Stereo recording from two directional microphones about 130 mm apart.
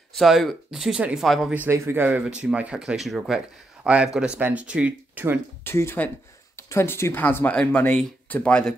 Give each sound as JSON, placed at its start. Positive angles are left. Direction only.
{"t": 0.1, "sound": "speech", "side_deg": 0}
{"t": 1.5, "sound": "speech", "side_deg": -15}
{"t": 5.6, "sound": "speech", "side_deg": 20}